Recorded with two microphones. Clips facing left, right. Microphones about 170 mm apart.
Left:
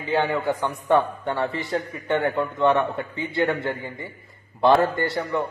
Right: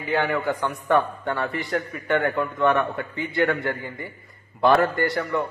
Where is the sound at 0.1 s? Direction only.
20° left (ahead or behind).